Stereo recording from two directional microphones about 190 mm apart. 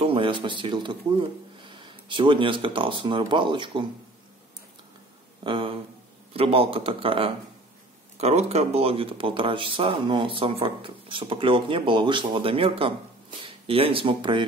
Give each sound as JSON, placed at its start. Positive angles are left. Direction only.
{"t": 0.0, "sound": "speech", "side_deg": -30}
{"t": 5.4, "sound": "speech", "side_deg": -25}